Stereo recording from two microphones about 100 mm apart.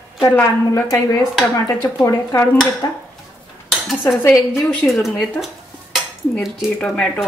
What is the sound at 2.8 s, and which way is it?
Speech, 40° left (ahead or behind).